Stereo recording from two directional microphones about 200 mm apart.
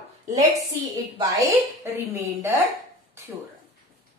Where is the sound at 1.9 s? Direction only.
15° right (ahead or behind).